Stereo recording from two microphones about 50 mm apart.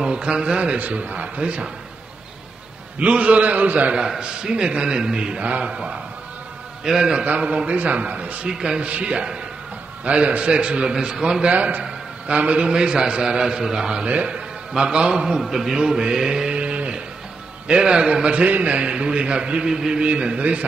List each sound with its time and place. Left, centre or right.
0.0 s a man's voice: right
0.7 s a man's voice: right
3.0 s a man's voice: right
4.2 s a man's voice: centre
7.2 s a man's voice: right
8.5 s a man's voice: centre
11.5 s a man's voice: right; by 14.0 s centre
14.0 s a man's voice: right
15.4 s mantra: centre
17.6 s a man's voice: centre